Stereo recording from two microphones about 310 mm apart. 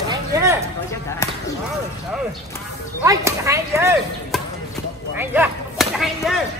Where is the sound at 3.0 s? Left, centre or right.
Centre.